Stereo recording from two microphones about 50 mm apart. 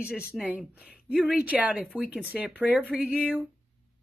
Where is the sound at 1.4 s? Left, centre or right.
Right.